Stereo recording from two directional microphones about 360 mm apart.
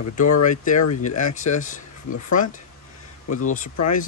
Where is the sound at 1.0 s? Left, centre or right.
Centre.